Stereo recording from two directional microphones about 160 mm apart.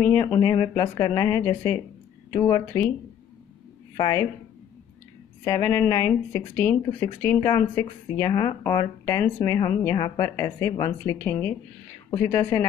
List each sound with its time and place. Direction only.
0.0 s speech: 15° left (ahead or behind)
2.6 s speech: 10° left (ahead or behind)
3.9 s a woman's voice: 25° left (ahead or behind)
5.4 s speech: 20° left (ahead or behind)